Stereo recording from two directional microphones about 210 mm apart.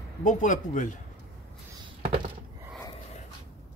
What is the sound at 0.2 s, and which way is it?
Speech, 40° left (ahead or behind).